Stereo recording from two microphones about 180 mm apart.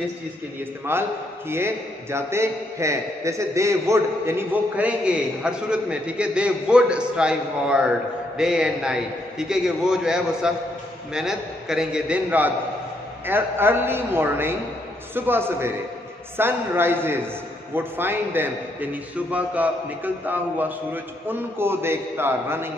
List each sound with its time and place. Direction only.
0.9 s a man's voice: 10° right (ahead or behind)